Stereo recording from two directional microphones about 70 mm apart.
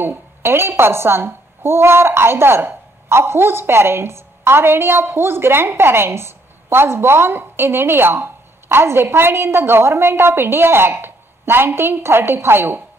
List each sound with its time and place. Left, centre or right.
0.0 s a woman's voice: right